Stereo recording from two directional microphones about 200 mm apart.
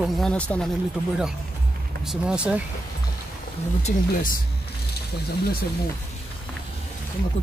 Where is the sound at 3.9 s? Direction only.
40° left (ahead or behind).